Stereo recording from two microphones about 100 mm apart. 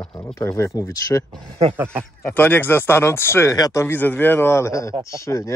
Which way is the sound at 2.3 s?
20° left (ahead or behind).